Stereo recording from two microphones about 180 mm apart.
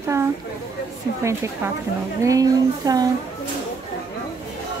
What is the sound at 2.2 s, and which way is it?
Speech, 20° right (ahead or behind).